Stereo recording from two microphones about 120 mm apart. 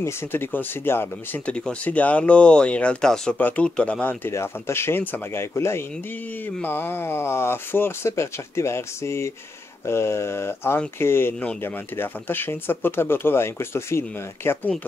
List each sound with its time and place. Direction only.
0.0 s speech: 20° left (ahead or behind)